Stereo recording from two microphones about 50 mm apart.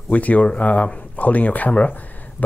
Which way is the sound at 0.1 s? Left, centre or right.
Left.